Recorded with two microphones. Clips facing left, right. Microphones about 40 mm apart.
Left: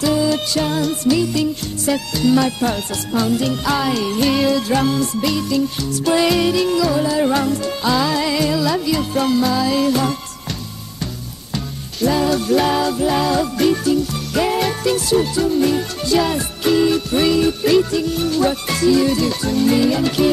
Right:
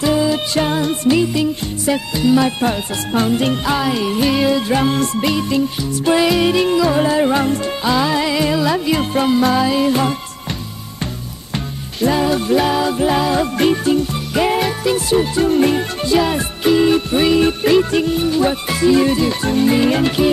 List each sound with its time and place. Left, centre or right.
0.0 s music: right
2.6 s music: right
3.6 s music: centre
4.9 s music: right
5.2 s music: right
9.7 s music: right
12.1 s music: right
12.5 s music: centre
13.4 s music: right
14.3 s music: centre
15.0 s music: right
15.4 s music: right
17.6 s music: right
18.1 s music: centre; by 20.1 s right